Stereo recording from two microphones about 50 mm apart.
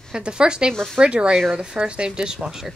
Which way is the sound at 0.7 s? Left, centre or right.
Centre.